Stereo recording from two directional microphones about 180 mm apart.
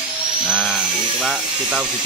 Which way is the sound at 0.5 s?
5° right (ahead or behind).